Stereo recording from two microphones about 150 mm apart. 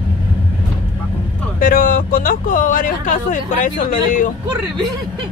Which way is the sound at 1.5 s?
65° left (ahead or behind).